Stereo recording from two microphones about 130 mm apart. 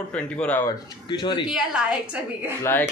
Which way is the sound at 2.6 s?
15° left (ahead or behind).